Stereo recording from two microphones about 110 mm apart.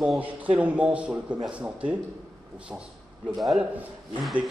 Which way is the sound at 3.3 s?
Centre (ahead or behind).